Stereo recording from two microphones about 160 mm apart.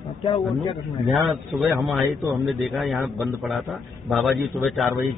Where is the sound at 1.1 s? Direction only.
Centre (ahead or behind).